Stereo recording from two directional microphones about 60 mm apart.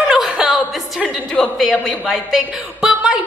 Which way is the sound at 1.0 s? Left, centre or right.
Centre.